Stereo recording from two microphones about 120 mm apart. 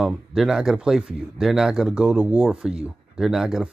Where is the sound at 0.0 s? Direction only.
5° right (ahead or behind).